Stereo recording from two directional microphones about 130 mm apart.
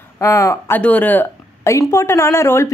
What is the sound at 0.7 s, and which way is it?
Speech, 15° left (ahead or behind).